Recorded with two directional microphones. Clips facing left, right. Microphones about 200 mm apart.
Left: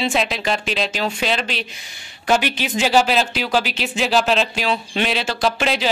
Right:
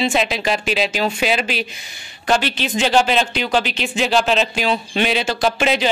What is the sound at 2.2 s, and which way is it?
A man's voice, 10° left (ahead or behind).